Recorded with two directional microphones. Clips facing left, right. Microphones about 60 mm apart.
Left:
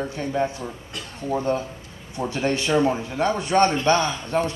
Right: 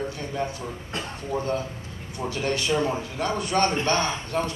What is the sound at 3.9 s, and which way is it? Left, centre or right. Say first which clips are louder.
Speech: left 2 dB; right.